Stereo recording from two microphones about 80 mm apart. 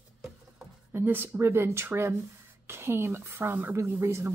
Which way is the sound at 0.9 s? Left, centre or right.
Right.